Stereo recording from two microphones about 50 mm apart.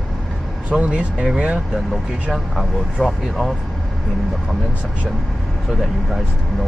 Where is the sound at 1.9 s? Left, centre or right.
Centre.